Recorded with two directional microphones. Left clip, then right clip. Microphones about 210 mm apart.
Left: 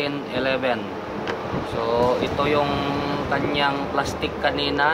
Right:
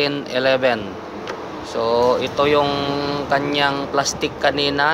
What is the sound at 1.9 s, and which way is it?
Speech, 35° right (ahead or behind).